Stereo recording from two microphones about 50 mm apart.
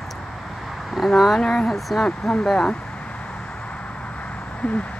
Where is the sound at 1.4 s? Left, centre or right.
Centre.